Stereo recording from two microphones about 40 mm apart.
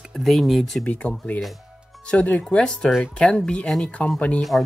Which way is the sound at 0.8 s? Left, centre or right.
Left.